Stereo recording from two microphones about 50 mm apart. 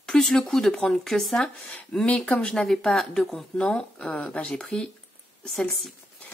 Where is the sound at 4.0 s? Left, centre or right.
Left.